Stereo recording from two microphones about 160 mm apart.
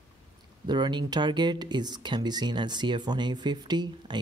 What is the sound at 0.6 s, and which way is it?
Speech, 25° right (ahead or behind).